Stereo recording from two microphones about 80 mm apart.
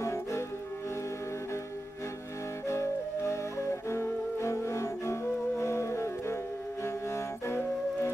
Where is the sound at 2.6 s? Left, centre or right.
Left.